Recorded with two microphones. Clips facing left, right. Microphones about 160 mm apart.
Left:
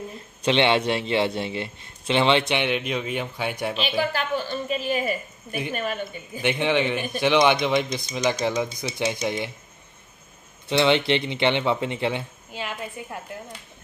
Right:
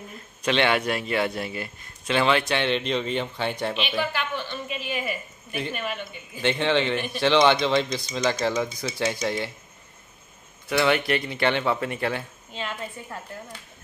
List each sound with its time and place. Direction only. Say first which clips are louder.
0.4 s a man's voice: left 2 dB; 25° left (ahead or behind)
2.6 s a man's voice: right 1 dB; 10° left (ahead or behind)
4.1 s a woman's voice: left 4 dB; 40° left (ahead or behind)
6.4 s a man's voice: even; 15° left (ahead or behind)
10.7 s a man's voice: left 2 dB; 20° left (ahead or behind)
12.5 s a man's voice: left 1 dB; 10° left (ahead or behind)